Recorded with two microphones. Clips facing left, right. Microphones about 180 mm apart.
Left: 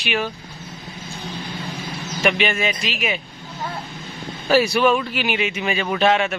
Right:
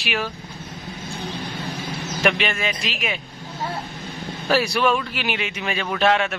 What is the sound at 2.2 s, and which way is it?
A man's voice, centre (ahead or behind).